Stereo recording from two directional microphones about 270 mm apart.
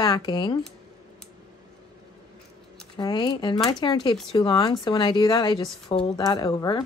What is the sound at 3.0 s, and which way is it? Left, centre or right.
Speech, centre.